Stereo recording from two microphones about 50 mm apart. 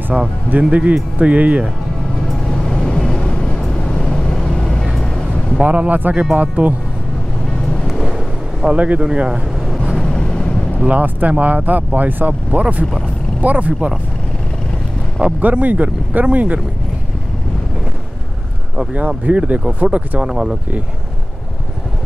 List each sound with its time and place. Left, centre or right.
0.1 s speech: centre
0.5 s speech: right
2.5 s vehicle: centre
5.6 s speech: right
8.7 s speech: right
9.0 s speech: centre
9.9 s vehicle: centre
10.8 s speech: right
15.2 s speech: centre
15.5 s speech: right
18.9 s speech: right
20.2 s speech: centre